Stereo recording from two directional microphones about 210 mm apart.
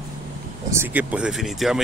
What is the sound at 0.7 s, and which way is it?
Speech, 10° right (ahead or behind).